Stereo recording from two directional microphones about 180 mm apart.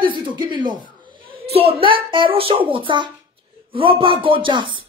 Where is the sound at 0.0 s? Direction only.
25° right (ahead or behind).